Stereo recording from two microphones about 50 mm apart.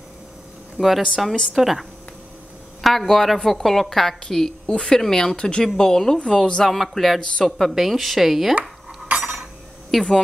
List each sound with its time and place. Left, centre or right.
0.7 s a woman's voice: centre
4.2 s a woman's voice: centre
6.6 s a woman's voice: centre
8.5 s cutlery: right
9.9 s a woman's voice: centre